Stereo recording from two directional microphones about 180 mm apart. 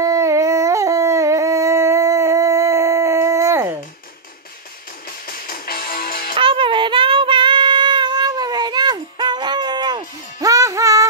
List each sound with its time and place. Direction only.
0.0 s a sound: 15° right (ahead or behind)
5.3 s music: 55° left (ahead or behind)
6.3 s child singing: 30° right (ahead or behind)